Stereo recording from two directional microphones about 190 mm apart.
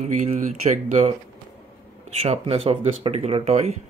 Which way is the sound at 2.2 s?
30° right (ahead or behind).